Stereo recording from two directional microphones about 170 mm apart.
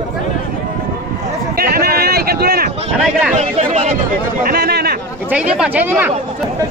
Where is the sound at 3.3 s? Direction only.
40° right (ahead or behind).